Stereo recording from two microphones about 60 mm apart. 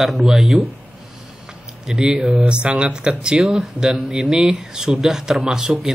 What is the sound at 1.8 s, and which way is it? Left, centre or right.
Speech, centre.